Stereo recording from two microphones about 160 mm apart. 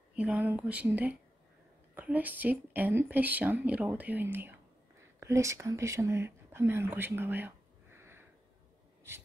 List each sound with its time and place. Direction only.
0.1 s speech: 10° right (ahead or behind)